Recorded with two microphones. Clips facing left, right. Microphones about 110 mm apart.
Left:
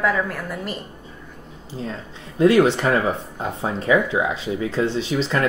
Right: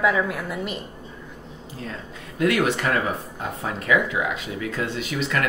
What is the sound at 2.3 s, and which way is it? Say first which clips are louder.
Speech: left 6 dB; 30° left (ahead or behind).